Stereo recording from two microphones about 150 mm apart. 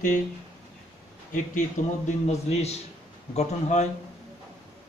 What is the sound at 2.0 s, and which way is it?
A man's voice, 45° left (ahead or behind).